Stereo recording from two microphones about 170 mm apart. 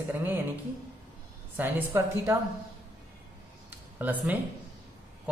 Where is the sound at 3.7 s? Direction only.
10° right (ahead or behind).